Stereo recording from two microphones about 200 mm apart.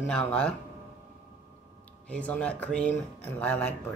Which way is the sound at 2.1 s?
5° left (ahead or behind).